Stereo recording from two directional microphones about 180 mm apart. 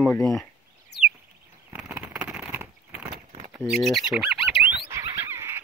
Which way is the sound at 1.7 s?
5° right (ahead or behind).